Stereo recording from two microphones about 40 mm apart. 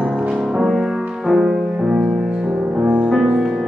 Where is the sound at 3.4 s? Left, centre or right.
Centre.